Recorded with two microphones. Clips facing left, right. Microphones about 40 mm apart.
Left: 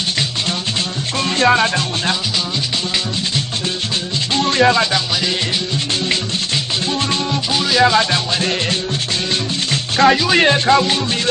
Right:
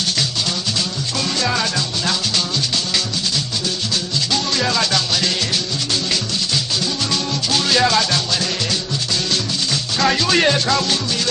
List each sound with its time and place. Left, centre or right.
1.5 s music: left
4.3 s music: left
7.5 s music: centre
8.0 s speech: left
10.0 s speech: centre